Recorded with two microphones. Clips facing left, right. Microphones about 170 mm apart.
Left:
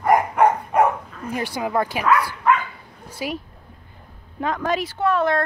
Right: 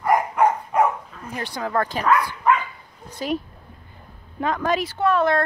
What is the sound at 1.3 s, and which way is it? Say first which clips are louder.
Speech: left 2 dB; 10° left (ahead or behind).